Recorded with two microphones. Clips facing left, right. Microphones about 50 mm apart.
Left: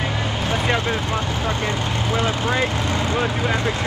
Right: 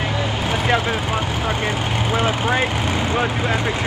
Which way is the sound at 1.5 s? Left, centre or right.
Right.